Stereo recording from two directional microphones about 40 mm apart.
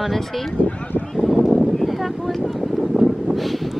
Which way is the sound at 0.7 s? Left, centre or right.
Left.